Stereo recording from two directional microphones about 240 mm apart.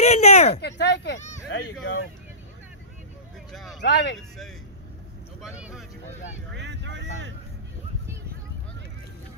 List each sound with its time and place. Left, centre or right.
0.0 s a sound: left
0.6 s speech: left
3.5 s speech: centre
3.8 s speech: left
5.4 s speech: centre
6.5 s speech: right